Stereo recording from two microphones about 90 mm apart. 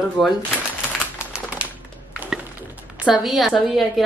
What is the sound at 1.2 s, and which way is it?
Typewriter, 10° right (ahead or behind).